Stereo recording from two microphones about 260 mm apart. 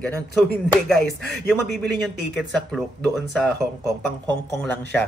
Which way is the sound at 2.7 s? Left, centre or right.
Centre.